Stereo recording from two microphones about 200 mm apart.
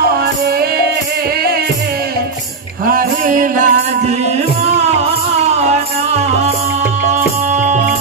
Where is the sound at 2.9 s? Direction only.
40° right (ahead or behind).